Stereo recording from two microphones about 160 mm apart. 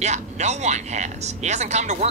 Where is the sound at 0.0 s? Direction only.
45° right (ahead or behind).